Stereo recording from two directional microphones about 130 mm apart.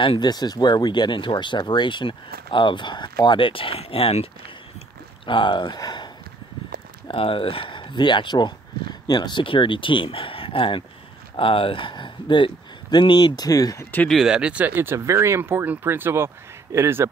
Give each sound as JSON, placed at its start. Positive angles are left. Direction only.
{"t": 0.0, "sound": "speech", "side_deg": 35}
{"t": 7.1, "sound": "speech", "side_deg": 45}
{"t": 13.9, "sound": "speech", "side_deg": 5}
{"t": 14.2, "sound": "speech", "side_deg": -5}